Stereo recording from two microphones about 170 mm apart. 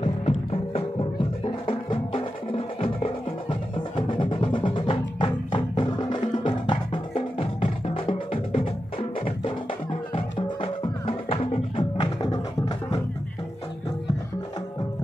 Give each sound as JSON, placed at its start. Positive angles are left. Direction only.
{"t": 0.0, "sound": "music", "side_deg": 35}
{"t": 10.1, "sound": "music", "side_deg": 35}